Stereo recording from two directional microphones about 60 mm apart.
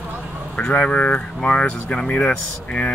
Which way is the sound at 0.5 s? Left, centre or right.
Left.